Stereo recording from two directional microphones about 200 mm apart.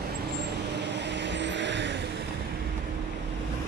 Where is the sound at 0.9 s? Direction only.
60° right (ahead or behind).